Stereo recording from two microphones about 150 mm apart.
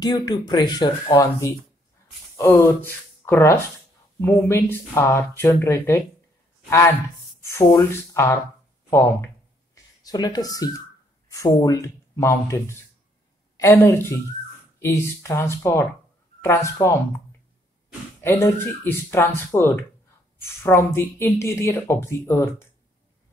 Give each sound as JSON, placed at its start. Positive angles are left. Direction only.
{"t": 0.0, "sound": "speech", "side_deg": 25}
{"t": 7.4, "sound": "speech", "side_deg": 20}
{"t": 10.0, "sound": "speech", "side_deg": 25}
{"t": 18.2, "sound": "speech", "side_deg": 15}